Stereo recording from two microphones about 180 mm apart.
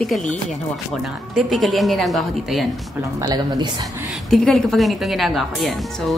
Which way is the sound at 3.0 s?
20° right (ahead or behind).